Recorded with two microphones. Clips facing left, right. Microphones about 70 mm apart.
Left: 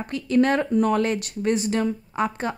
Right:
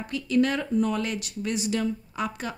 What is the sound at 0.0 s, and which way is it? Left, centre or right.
A woman's voice, left.